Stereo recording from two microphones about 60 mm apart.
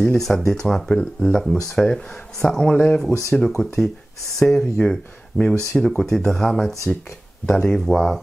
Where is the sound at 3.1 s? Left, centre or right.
Left.